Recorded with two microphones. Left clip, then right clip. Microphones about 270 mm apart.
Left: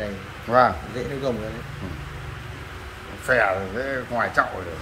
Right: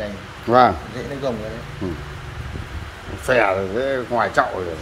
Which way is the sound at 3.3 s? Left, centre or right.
Right.